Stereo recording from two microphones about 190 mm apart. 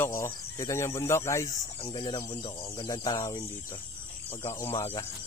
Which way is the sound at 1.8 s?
25° left (ahead or behind).